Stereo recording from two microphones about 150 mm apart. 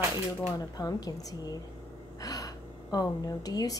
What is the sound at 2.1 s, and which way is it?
Gasp, 25° left (ahead or behind).